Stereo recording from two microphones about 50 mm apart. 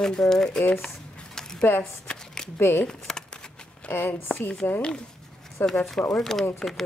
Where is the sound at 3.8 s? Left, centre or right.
Left.